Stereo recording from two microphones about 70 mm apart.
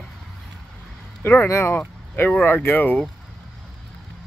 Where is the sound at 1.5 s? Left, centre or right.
Left.